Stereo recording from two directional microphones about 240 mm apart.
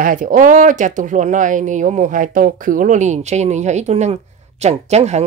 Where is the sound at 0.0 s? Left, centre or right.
Right.